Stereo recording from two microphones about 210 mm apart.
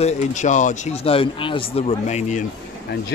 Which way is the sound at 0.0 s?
35° left (ahead or behind).